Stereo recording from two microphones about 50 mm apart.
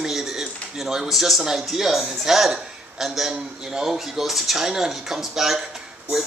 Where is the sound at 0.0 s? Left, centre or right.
Centre.